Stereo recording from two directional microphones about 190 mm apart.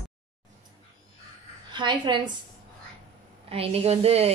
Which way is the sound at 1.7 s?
25° right (ahead or behind).